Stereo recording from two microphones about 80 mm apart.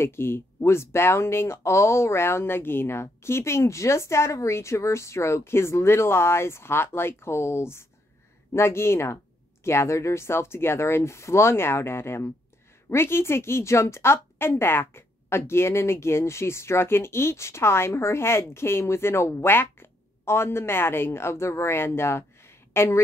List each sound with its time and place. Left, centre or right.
0.0 s a woman's voice: left